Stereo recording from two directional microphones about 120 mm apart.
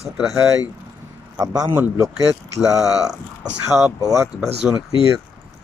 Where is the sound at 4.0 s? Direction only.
30° right (ahead or behind).